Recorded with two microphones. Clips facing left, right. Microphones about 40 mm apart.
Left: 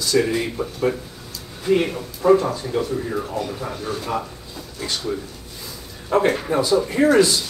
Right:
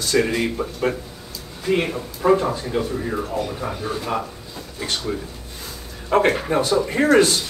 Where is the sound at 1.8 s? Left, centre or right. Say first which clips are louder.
Left 1 dB; centre.